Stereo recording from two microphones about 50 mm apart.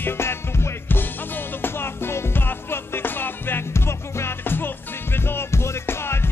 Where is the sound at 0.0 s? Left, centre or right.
Left.